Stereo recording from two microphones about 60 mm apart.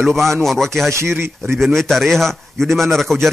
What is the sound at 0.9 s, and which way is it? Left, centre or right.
Speech, right.